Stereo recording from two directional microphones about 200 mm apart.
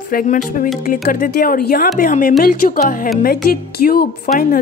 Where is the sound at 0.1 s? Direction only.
45° left (ahead or behind).